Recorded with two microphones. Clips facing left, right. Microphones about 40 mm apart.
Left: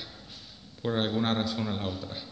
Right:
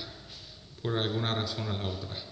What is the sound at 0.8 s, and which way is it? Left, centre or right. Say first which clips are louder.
A man's voice: left 3 dB; centre.